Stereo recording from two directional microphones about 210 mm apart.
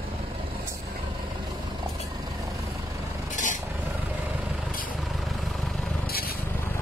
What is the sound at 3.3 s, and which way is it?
Vehicle, 35° left (ahead or behind).